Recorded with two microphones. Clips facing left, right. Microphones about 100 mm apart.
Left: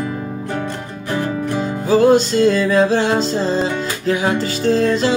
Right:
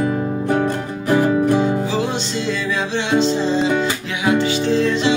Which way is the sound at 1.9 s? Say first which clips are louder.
Left 9 dB; 45° left (ahead or behind).